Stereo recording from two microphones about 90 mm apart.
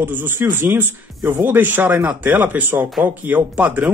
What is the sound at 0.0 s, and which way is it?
Speech, 20° right (ahead or behind).